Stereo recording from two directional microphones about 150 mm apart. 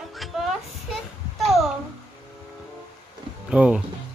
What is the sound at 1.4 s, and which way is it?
Babbling, centre (ahead or behind).